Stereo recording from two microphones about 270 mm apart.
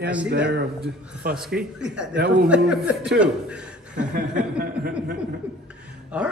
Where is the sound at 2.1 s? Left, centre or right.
Right.